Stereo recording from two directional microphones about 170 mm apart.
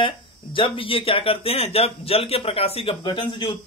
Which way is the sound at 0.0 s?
30° left (ahead or behind).